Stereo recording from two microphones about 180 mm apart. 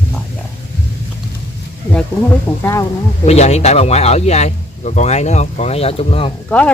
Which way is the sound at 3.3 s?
35° left (ahead or behind).